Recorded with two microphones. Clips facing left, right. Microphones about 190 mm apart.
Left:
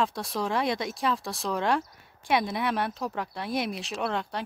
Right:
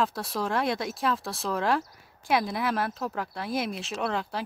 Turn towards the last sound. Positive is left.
turn(degrees=0)  # may be behind; listen again after turning